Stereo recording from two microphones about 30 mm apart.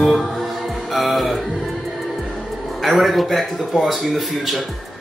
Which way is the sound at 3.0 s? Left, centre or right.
Centre.